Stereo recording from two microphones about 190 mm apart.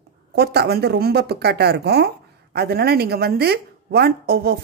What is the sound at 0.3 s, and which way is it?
Speech, 60° right (ahead or behind).